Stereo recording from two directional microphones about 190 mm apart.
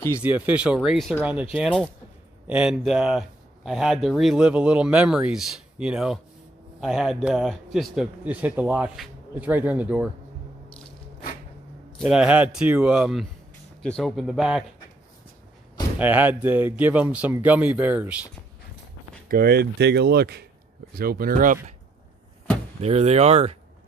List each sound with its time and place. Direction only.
0.2 s speech: 10° right (ahead or behind)
2.4 s speech: 5° right (ahead or behind)
12.0 s speech: 5° right (ahead or behind)
16.0 s speech: 10° right (ahead or behind)
19.2 s speech: 55° right (ahead or behind)
22.8 s speech: 35° right (ahead or behind)